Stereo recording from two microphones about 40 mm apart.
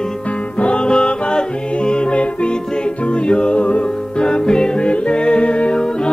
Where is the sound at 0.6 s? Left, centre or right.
Left.